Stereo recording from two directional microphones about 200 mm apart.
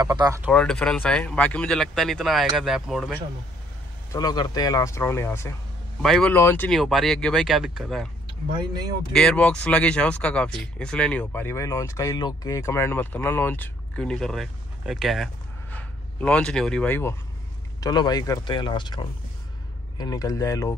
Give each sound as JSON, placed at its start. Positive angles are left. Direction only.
{"t": 0.0, "sound": "speech", "side_deg": -20}
{"t": 0.5, "sound": "speech", "side_deg": 5}
{"t": 4.1, "sound": "speech", "side_deg": 20}
{"t": 6.0, "sound": "speech", "side_deg": 0}
{"t": 8.3, "sound": "speech", "side_deg": -20}
{"t": 9.1, "sound": "speech", "side_deg": 5}
{"t": 17.7, "sound": "speech", "side_deg": 20}